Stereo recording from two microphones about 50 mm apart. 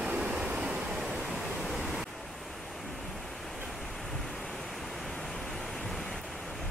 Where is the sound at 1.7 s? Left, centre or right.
Centre.